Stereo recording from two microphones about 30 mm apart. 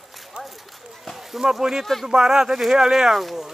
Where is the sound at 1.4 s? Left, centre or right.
Centre.